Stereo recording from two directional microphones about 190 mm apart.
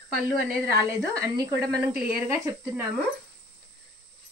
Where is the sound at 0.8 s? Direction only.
15° right (ahead or behind).